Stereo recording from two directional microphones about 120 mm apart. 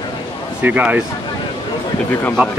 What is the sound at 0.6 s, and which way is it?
Speech, 15° right (ahead or behind).